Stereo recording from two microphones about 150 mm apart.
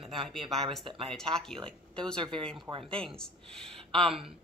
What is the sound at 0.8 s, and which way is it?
Speech, 35° right (ahead or behind).